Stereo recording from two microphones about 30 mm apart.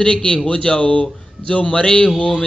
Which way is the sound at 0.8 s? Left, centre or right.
Left.